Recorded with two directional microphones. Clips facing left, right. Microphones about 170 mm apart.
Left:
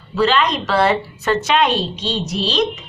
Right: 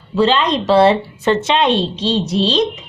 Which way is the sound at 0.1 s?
25° right (ahead or behind).